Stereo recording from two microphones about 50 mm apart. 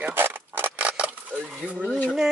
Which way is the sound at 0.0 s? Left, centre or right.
Right.